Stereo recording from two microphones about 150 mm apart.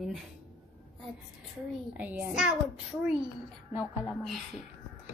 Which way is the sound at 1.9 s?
10° right (ahead or behind).